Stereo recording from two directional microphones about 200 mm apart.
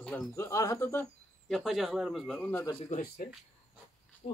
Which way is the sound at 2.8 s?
35° left (ahead or behind).